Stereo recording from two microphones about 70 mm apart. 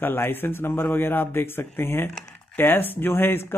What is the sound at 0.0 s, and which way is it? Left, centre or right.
Speech, left.